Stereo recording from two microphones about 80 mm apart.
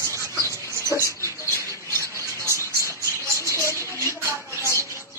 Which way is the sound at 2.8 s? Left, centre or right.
Left.